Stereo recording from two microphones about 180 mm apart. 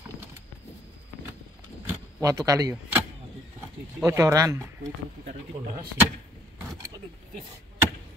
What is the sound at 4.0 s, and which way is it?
Speech, 15° right (ahead or behind).